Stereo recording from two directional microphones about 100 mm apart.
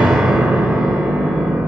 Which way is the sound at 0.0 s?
5° right (ahead or behind).